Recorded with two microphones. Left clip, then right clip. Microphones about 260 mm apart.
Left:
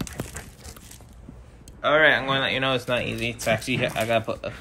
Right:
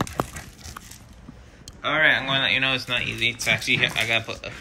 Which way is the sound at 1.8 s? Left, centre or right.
Centre.